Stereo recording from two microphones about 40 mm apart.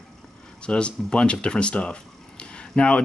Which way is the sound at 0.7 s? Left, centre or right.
Left.